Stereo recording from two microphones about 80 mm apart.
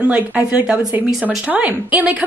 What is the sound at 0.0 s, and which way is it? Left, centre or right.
A woman's voice, centre.